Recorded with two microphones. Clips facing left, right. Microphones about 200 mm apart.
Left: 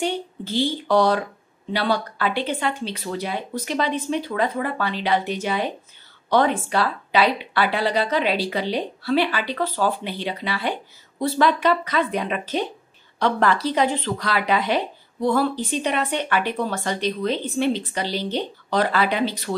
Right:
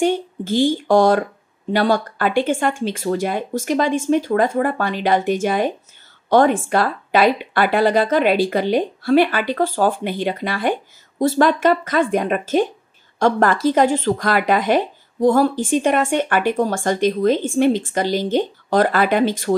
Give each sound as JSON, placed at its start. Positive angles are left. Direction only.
{"t": 0.0, "sound": "speech", "side_deg": -50}